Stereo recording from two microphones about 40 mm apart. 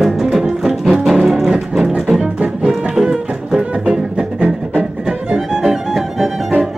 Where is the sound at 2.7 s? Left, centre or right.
Right.